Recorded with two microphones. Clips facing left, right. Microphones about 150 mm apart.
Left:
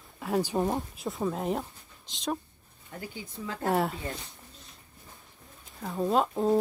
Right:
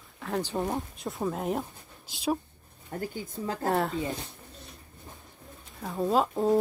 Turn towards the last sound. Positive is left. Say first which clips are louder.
# right 1 dB
turn(degrees=0)  # may be behind; listen again after turning